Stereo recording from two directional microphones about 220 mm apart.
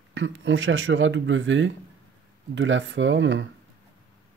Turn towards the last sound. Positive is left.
turn(degrees=-55)  # may be behind; listen again after turning